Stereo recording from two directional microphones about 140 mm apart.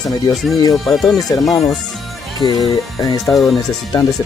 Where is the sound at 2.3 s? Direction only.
30° left (ahead or behind).